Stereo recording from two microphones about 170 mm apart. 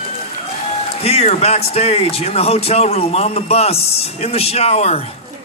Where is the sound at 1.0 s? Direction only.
35° left (ahead or behind).